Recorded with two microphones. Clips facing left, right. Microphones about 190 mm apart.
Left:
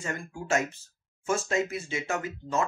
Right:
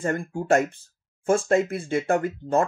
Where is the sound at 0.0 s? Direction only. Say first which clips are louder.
Right 9 dB; 55° right (ahead or behind).